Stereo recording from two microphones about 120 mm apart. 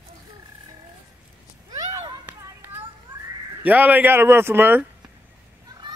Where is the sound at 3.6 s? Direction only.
15° right (ahead or behind).